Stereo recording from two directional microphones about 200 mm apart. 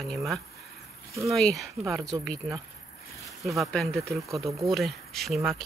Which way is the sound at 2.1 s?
20° right (ahead or behind).